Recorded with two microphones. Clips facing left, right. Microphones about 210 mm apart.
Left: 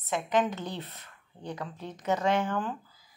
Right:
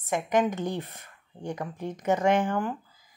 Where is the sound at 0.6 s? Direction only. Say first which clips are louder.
Right 6 dB; 50° right (ahead or behind).